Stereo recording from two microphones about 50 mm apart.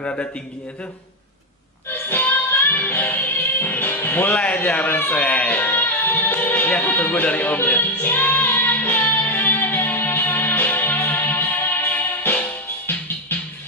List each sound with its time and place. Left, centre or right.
0.0 s speech: left
1.9 s music: left
4.3 s speech: left
5.2 s speech: left
5.5 s music: left